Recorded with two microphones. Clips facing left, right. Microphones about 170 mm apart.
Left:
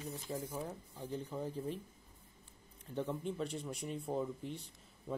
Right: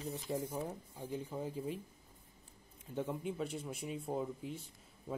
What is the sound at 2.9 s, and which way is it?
Speech, 10° right (ahead or behind).